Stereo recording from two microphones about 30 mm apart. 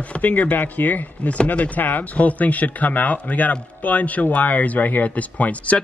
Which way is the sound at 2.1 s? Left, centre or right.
Left.